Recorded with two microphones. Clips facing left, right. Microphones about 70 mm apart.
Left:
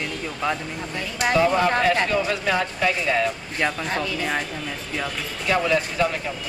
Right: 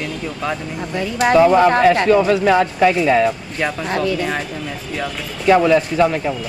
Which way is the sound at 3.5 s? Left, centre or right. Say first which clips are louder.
Right 4 dB; centre.